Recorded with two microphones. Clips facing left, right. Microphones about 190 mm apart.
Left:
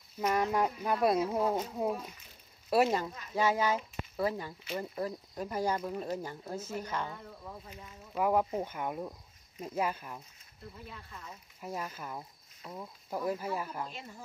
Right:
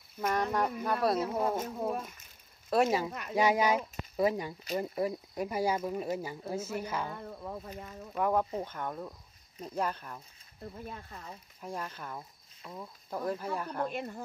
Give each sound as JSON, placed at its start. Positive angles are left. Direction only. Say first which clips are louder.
{"t": 0.3, "sound": "speech", "louder": "left 1 dB", "side_deg": 10}
{"t": 2.0, "sound": "speech", "louder": "right 4 dB", "side_deg": -50}
{"t": 2.7, "sound": "speech", "louder": "even", "side_deg": 0}
{"t": 3.1, "sound": "speech", "louder": "right 6 dB", "side_deg": -70}
{"t": 3.3, "sound": "speech", "louder": "right 2 dB", "side_deg": -15}
{"t": 7.1, "sound": "speech", "louder": "right 5 dB", "side_deg": -45}
{"t": 8.2, "sound": "speech", "louder": "left 1 dB", "side_deg": 10}
{"t": 10.6, "sound": "speech", "louder": "right 5 dB", "side_deg": -45}
{"t": 11.6, "sound": "speech", "louder": "even", "side_deg": 5}
{"t": 13.8, "sound": "speech", "louder": "right 9 dB", "side_deg": -55}